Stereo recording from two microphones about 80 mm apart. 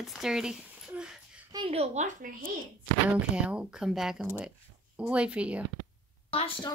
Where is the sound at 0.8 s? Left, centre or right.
Centre.